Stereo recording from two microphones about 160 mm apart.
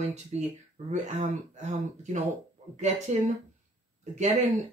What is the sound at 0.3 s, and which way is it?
Speech, 45° right (ahead or behind).